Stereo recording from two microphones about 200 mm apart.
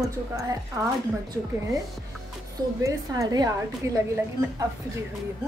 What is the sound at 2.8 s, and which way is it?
A woman's voice, 15° right (ahead or behind).